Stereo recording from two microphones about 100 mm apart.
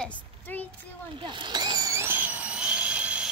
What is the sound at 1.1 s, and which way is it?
Speech, 55° right (ahead or behind).